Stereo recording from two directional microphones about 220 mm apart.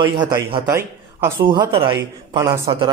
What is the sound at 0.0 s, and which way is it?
Speech, 20° right (ahead or behind).